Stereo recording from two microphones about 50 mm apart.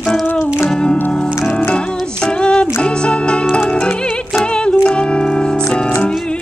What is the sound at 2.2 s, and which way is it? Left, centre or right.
Music, centre.